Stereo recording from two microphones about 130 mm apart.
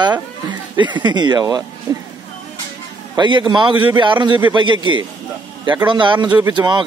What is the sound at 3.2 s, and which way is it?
Speech, 35° right (ahead or behind).